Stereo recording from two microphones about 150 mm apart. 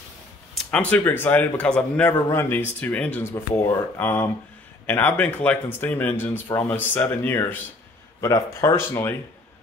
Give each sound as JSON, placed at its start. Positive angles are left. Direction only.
{"t": 0.7, "sound": "speech", "side_deg": 10}